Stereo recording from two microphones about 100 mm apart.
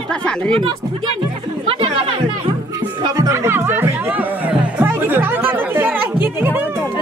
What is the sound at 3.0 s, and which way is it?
Music, 35° right (ahead or behind).